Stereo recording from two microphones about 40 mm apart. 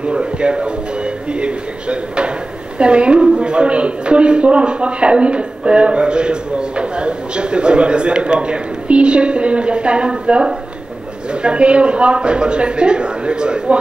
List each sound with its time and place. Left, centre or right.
0.0 s a woman's voice: right